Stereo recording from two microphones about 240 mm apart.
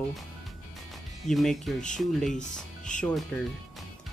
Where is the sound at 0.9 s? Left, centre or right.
Centre.